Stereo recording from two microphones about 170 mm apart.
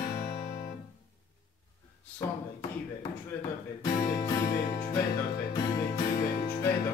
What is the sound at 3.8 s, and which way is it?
Music, 20° left (ahead or behind).